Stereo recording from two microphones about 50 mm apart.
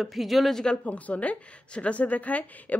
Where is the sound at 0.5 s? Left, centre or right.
Centre.